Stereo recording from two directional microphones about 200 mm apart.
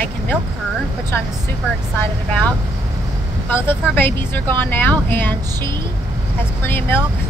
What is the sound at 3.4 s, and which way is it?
A woman's voice, 10° left (ahead or behind).